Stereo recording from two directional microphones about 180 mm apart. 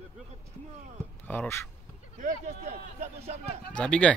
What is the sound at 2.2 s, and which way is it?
A man's voice, 40° right (ahead or behind).